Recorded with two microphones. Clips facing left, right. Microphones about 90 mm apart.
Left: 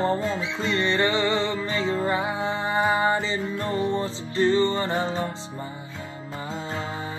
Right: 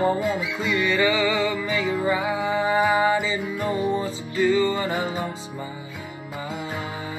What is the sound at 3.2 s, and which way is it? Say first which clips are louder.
Music: right 1 dB; 10° right (ahead or behind).